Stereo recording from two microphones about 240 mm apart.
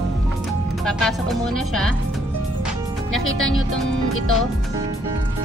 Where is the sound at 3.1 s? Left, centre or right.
Centre.